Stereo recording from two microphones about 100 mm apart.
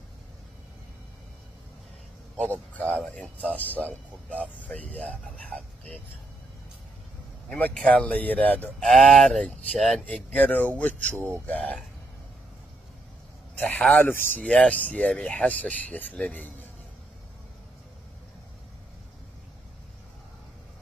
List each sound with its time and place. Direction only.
2.3 s speech: 15° left (ahead or behind)
7.4 s speech: 10° left (ahead or behind)
8.8 s speech: 5° left (ahead or behind)
10.0 s speech: 15° left (ahead or behind)
11.1 s a sound: 20° right (ahead or behind)
11.4 s speech: 15° left (ahead or behind)
13.6 s speech: 15° left (ahead or behind)